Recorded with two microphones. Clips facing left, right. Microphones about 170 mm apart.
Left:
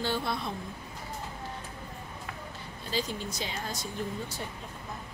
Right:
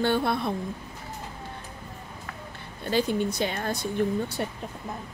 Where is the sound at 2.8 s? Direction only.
60° right (ahead or behind).